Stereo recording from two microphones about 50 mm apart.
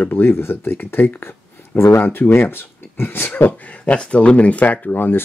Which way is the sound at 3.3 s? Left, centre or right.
Left.